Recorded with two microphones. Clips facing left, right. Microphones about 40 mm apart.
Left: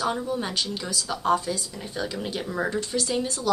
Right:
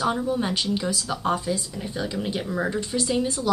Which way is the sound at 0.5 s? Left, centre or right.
Right.